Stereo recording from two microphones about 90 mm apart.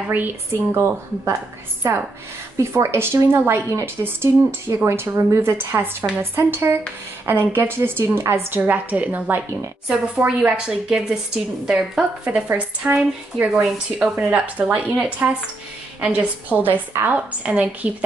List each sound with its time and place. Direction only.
0.7 s a woman's voice: 30° right (ahead or behind); by 12.4 s 10° right (ahead or behind)
12.4 s speech: 20° right (ahead or behind)